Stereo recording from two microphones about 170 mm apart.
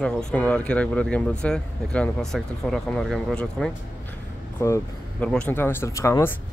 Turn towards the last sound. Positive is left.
turn(degrees=15)  # may be behind; listen again after turning